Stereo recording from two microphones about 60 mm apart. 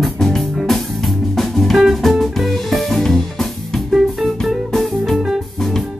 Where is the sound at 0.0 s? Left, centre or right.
Centre.